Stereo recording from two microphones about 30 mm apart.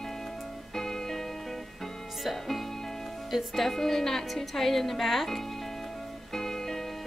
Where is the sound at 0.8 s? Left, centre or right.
Centre.